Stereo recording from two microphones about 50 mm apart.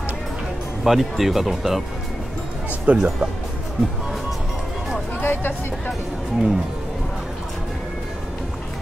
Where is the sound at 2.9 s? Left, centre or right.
Right.